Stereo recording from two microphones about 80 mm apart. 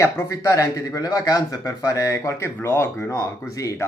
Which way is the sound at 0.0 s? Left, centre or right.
Left.